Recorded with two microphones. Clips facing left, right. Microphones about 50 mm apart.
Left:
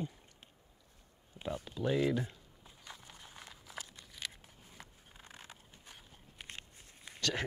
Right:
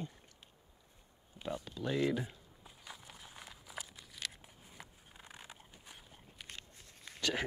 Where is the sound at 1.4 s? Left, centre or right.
Left.